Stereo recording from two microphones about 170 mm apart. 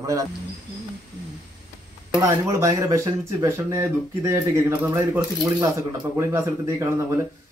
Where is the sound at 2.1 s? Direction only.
15° right (ahead or behind).